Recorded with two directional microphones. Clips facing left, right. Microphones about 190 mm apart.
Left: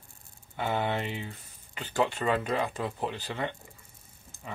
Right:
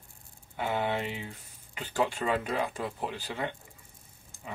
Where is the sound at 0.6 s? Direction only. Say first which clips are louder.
Left 1 dB; 10° right (ahead or behind).